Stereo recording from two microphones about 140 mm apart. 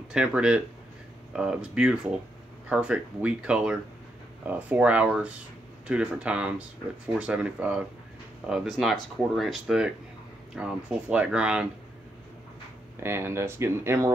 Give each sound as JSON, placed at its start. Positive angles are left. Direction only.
{"t": 0.1, "sound": "speech", "side_deg": -5}
{"t": 13.0, "sound": "speech", "side_deg": -15}